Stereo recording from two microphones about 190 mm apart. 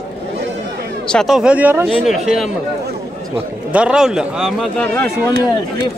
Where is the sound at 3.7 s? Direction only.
5° right (ahead or behind).